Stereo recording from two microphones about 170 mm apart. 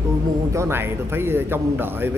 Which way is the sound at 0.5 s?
15° right (ahead or behind).